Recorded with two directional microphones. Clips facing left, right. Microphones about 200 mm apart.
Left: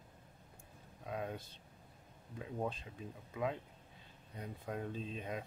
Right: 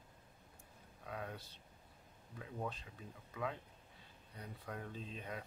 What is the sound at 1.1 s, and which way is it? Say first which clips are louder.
Speech: left 5 dB; 25° left (ahead or behind).